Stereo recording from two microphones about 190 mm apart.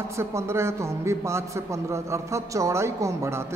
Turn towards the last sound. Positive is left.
turn(degrees=-15)  # may be behind; listen again after turning